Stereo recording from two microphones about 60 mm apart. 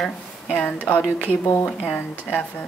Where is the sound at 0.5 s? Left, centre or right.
Left.